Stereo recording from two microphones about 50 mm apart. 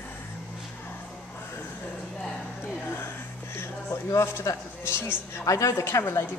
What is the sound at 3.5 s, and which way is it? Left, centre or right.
Speech, left.